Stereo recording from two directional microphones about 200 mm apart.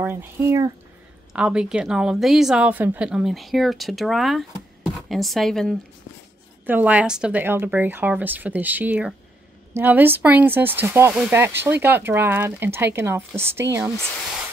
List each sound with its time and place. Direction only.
0.0 s a woman's voice: 10° right (ahead or behind)
6.6 s a woman's voice: 10° right (ahead or behind)